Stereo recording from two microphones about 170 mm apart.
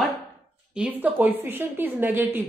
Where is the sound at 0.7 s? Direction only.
10° right (ahead or behind).